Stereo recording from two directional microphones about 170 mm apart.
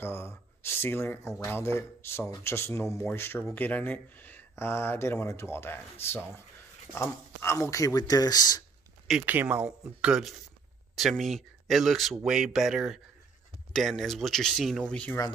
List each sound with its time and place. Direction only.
0.0 s speech: 15° left (ahead or behind)
7.0 s speech: 15° left (ahead or behind)
9.0 s speech: 5° right (ahead or behind)
11.0 s speech: centre (ahead or behind)